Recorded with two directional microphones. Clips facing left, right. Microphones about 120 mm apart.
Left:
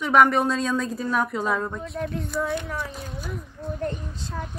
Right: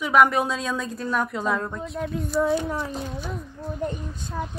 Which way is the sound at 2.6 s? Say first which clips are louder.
Right 4 dB; 25° right (ahead or behind).